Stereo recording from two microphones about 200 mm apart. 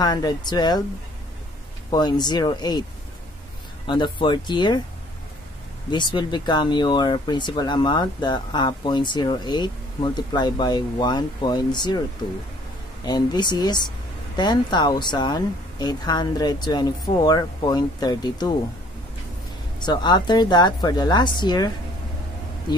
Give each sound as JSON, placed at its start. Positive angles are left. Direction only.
{"t": 0.0, "sound": "speech", "side_deg": 20}
{"t": 1.9, "sound": "speech", "side_deg": 20}
{"t": 3.8, "sound": "speech", "side_deg": 25}
{"t": 5.9, "sound": "speech", "side_deg": 20}
{"t": 13.0, "sound": "speech", "side_deg": 20}
{"t": 19.8, "sound": "speech", "side_deg": 20}